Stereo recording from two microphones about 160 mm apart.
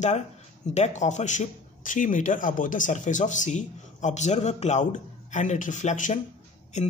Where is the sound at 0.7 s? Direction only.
45° left (ahead or behind).